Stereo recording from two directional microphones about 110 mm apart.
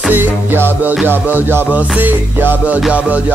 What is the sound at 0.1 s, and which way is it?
Music, 20° right (ahead or behind).